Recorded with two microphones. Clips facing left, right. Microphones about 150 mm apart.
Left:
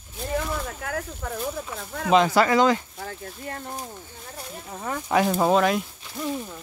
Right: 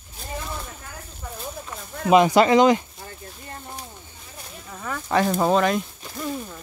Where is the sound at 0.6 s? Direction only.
85° left.